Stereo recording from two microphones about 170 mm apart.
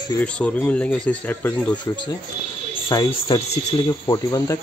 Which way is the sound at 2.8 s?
30° left (ahead or behind).